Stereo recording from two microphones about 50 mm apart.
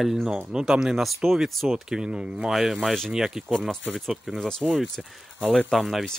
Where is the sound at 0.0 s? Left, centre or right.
Centre.